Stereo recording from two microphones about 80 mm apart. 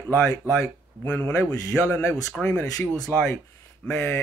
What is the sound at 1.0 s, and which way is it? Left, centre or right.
A man's voice, left.